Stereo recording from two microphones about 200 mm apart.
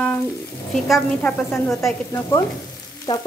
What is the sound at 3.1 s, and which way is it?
Frying, 20° left (ahead or behind).